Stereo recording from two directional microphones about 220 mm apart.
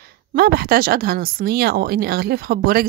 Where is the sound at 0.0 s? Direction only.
45° right (ahead or behind).